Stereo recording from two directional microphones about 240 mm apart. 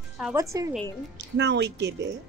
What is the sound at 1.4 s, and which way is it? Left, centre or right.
Speech, right.